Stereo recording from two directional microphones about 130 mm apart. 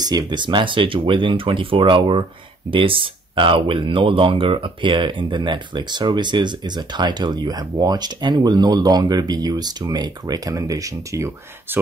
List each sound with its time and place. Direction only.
0.0 s speech: 35° right (ahead or behind)